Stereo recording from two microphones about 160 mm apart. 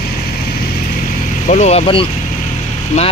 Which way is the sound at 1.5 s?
45° left (ahead or behind).